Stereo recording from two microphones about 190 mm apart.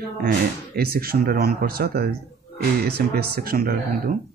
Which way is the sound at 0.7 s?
55° right (ahead or behind).